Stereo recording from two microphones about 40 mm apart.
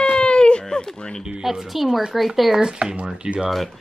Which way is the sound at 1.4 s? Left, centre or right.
Centre.